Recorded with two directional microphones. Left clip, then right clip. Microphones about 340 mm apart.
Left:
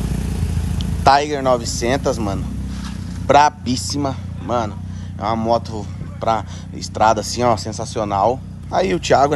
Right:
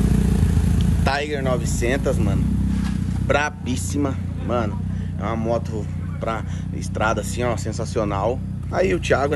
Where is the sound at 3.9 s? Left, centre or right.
Centre.